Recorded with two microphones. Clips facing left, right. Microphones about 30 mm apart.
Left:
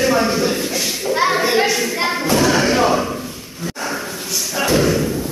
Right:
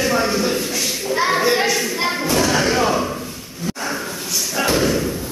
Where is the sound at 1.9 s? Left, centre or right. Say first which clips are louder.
Left 2 dB; centre.